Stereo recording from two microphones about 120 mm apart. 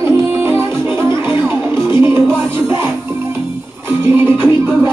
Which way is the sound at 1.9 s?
20° right (ahead or behind).